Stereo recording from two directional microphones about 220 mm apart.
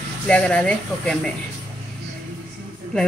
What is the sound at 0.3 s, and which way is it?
Speech, 5° left (ahead or behind).